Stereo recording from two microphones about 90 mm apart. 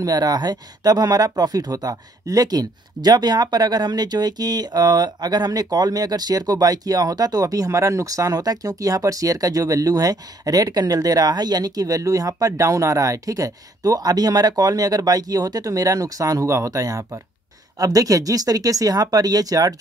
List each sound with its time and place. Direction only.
0.0 s speech: 45° right (ahead or behind)